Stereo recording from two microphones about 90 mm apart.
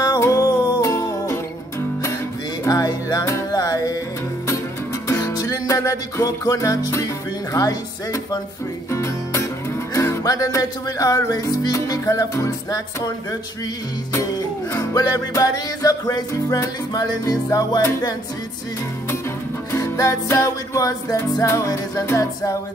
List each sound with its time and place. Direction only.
0.0 s music: 35° left (ahead or behind)
2.6 s music: 40° left (ahead or behind)
5.2 s music: 45° left (ahead or behind)
14.8 s music: 40° left (ahead or behind)
19.7 s music: 40° left (ahead or behind)